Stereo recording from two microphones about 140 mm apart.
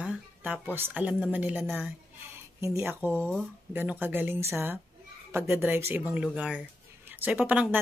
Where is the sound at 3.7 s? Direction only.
15° right (ahead or behind).